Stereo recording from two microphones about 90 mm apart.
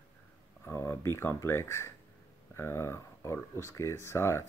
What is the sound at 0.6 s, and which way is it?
Speech, 25° left (ahead or behind).